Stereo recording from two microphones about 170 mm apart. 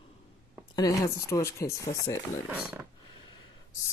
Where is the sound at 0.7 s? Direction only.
20° left (ahead or behind).